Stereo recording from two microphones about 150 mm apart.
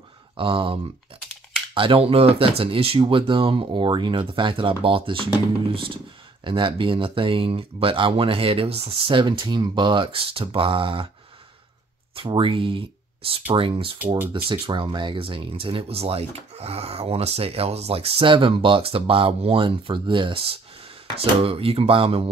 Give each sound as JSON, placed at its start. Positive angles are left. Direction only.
{"t": 0.4, "sound": "speech", "side_deg": -35}
{"t": 12.2, "sound": "speech", "side_deg": -35}